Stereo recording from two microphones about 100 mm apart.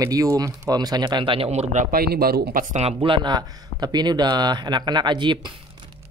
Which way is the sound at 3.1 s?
45° right (ahead or behind).